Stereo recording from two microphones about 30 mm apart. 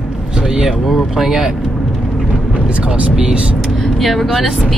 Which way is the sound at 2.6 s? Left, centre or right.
Right.